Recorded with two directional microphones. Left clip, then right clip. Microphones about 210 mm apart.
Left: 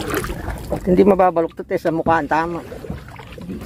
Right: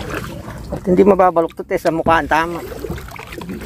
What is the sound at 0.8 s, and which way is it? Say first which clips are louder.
Speech: right 2 dB; centre (ahead or behind).